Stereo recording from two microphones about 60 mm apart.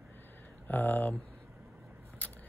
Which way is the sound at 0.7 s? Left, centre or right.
Left.